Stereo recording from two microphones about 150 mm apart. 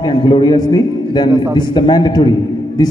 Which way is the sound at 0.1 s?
30° left (ahead or behind).